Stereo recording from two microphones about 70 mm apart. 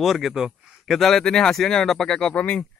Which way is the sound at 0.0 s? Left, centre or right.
Centre.